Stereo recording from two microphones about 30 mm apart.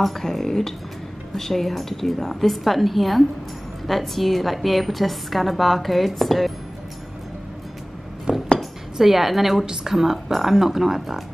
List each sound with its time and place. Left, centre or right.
0.2 s a woman's voice: centre
8.3 s dishes: right
8.9 s a woman's voice: centre